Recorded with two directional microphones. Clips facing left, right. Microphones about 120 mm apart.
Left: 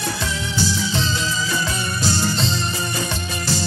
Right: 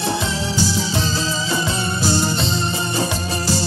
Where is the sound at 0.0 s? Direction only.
25° right (ahead or behind).